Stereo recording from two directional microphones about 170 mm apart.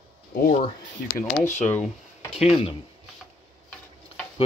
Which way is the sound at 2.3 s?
35° left (ahead or behind).